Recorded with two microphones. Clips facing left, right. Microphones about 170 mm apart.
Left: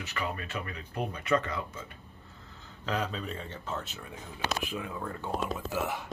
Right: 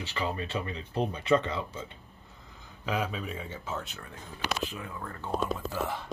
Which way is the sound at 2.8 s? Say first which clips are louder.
Right 1 dB; 10° right (ahead or behind).